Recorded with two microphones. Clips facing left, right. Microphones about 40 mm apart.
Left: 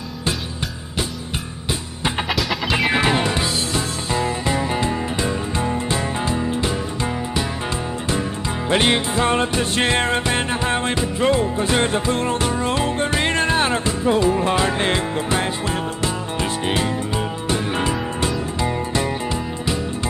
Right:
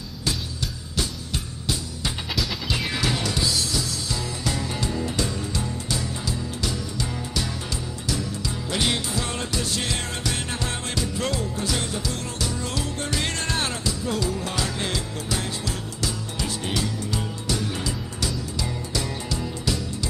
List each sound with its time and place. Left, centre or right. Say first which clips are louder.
2.9 s music: left 7 dB; left
8.1 s music: left 4 dB; left